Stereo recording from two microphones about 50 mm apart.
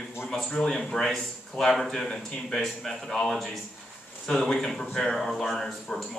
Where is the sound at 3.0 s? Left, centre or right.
Centre.